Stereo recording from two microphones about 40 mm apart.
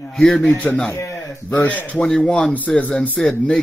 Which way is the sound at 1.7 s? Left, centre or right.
Left.